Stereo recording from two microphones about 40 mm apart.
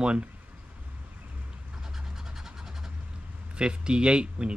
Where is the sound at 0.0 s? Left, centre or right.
Right.